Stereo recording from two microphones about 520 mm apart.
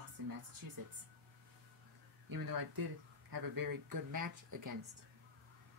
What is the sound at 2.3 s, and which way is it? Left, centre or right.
Speech, right.